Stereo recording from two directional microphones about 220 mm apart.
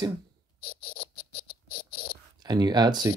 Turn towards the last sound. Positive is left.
turn(degrees=-20)  # may be behind; listen again after turning